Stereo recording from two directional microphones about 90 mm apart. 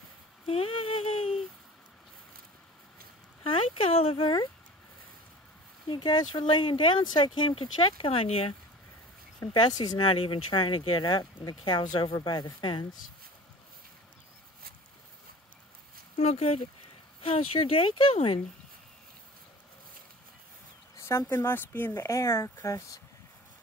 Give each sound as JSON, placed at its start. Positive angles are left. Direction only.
{"t": 0.5, "sound": "a sound", "side_deg": 90}
{"t": 3.4, "sound": "a sound", "side_deg": 85}
{"t": 5.9, "sound": "speech", "side_deg": 60}
{"t": 9.5, "sound": "speech", "side_deg": 55}
{"t": 10.0, "sound": "speech", "side_deg": 75}
{"t": 17.2, "sound": "speech", "side_deg": 85}
{"t": 21.3, "sound": "speech", "side_deg": 25}